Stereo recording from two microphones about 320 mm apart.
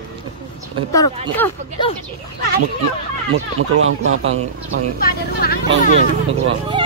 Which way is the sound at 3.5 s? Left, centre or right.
Right.